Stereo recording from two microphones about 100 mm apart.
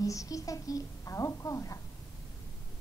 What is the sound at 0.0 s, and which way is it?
A woman's voice, 35° left (ahead or behind).